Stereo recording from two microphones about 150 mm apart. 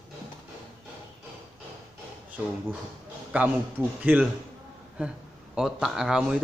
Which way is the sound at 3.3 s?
10° right (ahead or behind).